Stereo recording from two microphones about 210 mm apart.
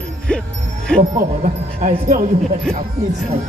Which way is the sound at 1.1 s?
30° right (ahead or behind).